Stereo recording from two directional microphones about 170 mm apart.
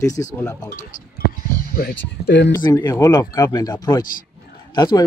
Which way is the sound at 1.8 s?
70° left (ahead or behind).